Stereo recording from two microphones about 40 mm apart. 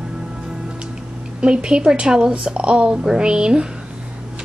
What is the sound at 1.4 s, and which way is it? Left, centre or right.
A woman's voice, right.